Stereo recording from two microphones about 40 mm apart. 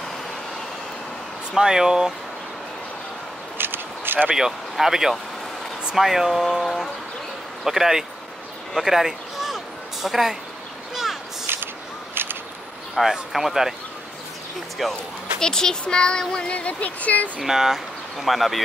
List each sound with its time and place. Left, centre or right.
1.6 s speech: centre
3.5 s a sound: right
4.3 s speech: centre
7.6 s speech: centre
11.5 s a sound: right
13.0 s speech: centre
14.8 s speech: centre
15.4 s speech: centre
16.5 s speech: left
17.4 s speech: centre